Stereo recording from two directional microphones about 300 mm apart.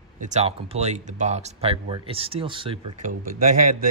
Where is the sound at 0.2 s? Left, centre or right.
Right.